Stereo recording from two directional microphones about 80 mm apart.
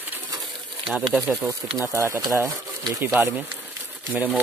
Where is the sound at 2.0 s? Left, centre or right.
Right.